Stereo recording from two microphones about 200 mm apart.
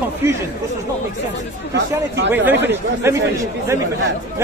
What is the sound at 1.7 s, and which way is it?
Speech, 60° right (ahead or behind).